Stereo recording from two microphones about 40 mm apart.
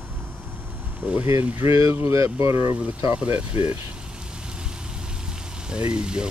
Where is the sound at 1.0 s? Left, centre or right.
Right.